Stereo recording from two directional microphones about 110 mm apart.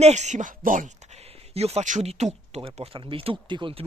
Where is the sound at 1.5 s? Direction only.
70° right (ahead or behind).